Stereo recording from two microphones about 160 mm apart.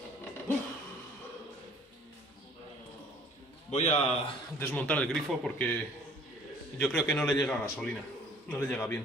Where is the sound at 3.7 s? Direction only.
45° left (ahead or behind).